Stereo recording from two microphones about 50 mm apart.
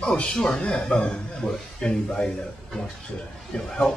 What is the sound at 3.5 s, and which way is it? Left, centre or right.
Speech, centre.